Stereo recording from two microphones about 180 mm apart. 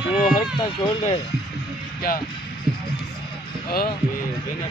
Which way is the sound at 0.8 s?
20° left (ahead or behind).